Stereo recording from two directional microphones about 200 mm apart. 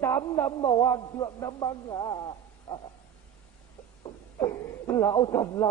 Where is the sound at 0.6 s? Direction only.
25° left (ahead or behind).